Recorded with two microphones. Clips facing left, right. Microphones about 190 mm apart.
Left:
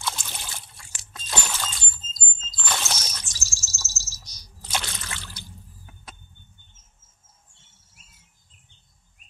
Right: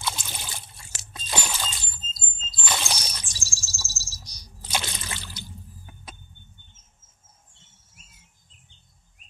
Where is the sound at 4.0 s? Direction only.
35° right (ahead or behind).